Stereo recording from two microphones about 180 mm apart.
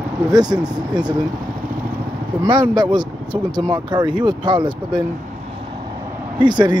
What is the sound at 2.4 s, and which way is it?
Speech, 25° right (ahead or behind).